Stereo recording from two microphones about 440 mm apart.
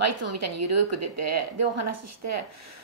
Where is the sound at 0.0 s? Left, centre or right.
Right.